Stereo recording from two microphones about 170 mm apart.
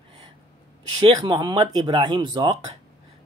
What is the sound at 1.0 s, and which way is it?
Speech, 25° right (ahead or behind).